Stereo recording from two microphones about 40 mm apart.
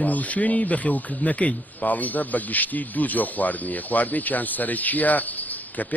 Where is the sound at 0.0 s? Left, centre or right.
Left.